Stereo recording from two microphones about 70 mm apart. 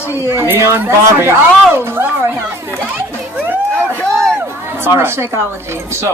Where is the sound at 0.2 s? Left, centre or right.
Right.